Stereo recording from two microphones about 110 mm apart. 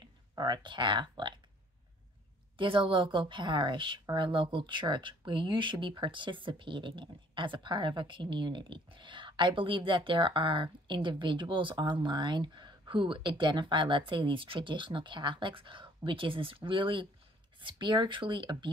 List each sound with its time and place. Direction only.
0.4 s a woman's voice: 40° right (ahead or behind)
2.5 s a woman's voice: 55° right (ahead or behind)